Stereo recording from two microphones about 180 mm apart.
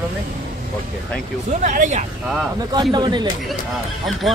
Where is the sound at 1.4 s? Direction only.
40° right (ahead or behind).